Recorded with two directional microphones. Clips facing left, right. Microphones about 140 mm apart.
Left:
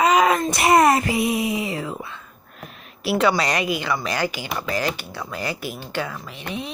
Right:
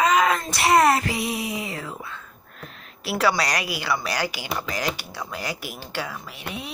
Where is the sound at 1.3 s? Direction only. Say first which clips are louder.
Left 6 dB; 20° left (ahead or behind).